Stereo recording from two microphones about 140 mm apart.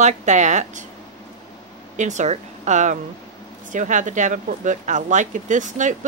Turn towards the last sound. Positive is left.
turn(degrees=-60)  # may be behind; listen again after turning